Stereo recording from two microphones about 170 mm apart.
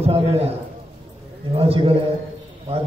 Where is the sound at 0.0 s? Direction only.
35° right (ahead or behind).